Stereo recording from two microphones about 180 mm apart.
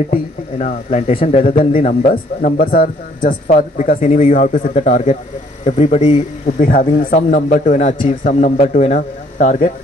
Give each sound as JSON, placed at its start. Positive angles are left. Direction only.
{"t": 0.1, "sound": "speech", "side_deg": 40}